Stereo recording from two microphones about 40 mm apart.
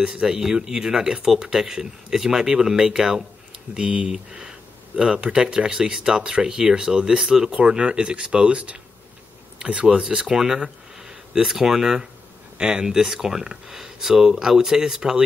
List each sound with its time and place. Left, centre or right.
0.0 s speech: centre
3.7 s speech: right
4.0 s speech: centre
7.5 s speech: right
9.9 s speech: centre
12.5 s speech: right